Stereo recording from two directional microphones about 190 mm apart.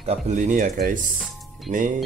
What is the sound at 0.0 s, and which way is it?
Speech, 35° right (ahead or behind).